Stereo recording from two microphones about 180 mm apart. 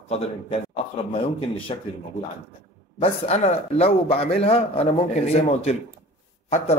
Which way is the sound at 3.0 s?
35° left (ahead or behind).